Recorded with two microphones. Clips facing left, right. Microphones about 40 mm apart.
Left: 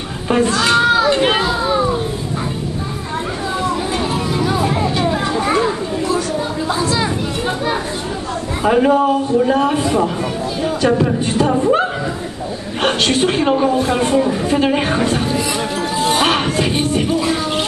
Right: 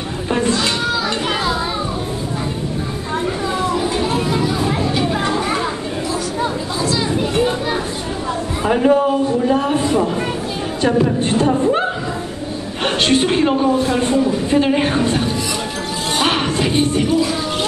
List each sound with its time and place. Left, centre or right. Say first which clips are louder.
4.6 s a sound: left 1 dB; centre
5.2 s children playing: left 2 dB; centre
8.6 s a man's voice: left 1 dB; centre
10.9 s speech: right 1 dB; centre
13.3 s speech: left 1 dB; centre